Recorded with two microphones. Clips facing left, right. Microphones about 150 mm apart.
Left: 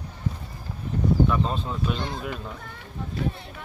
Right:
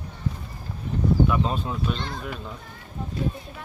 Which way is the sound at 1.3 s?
10° right (ahead or behind).